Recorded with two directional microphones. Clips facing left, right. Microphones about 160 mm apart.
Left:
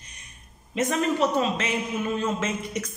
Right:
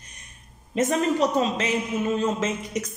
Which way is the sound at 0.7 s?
35° right (ahead or behind).